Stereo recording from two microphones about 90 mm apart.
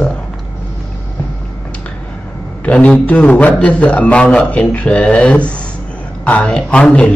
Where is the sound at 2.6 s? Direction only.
15° left (ahead or behind).